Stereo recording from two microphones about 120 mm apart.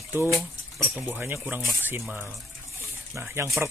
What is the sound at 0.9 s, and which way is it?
Speech, 15° right (ahead or behind).